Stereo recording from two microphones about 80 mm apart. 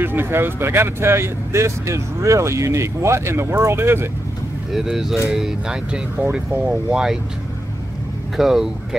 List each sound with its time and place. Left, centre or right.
0.0 s speech: right
4.7 s speech: centre
8.4 s speech: centre